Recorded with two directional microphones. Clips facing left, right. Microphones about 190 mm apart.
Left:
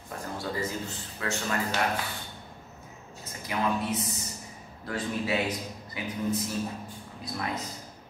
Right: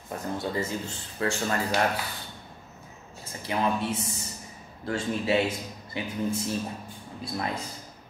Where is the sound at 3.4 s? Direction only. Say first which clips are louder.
Right 2 dB; 30° right (ahead or behind).